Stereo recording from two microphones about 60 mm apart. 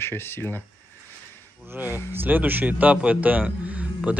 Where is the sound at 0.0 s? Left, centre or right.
Left.